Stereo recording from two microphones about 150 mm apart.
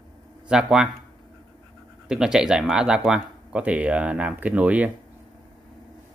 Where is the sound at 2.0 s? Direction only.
5° right (ahead or behind).